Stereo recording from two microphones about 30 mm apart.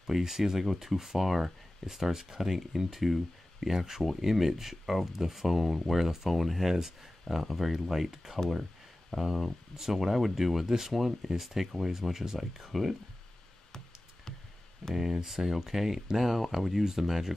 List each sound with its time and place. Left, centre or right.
0.0 s speech: centre
14.8 s speech: centre
15.1 s speech: centre